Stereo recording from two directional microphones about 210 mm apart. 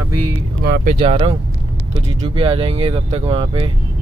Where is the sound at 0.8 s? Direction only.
35° right (ahead or behind).